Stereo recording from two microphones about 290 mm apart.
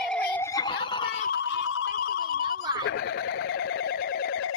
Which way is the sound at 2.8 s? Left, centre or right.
Left.